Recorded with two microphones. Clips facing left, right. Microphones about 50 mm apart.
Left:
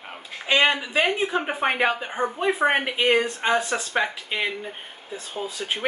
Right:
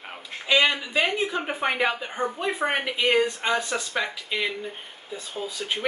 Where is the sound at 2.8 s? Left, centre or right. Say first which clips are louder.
Left 1 dB; left.